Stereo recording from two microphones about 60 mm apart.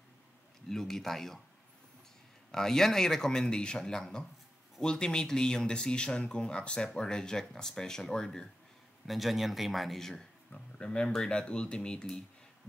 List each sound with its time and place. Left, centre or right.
0.7 s speech: centre
2.5 s speech: centre
9.0 s speech: centre